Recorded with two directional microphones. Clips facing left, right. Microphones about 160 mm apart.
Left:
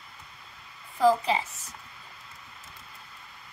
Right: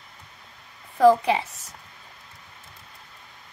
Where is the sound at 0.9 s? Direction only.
65° right (ahead or behind).